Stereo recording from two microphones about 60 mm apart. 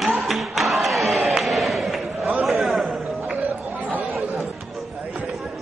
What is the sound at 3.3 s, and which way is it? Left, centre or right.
Chatter, right.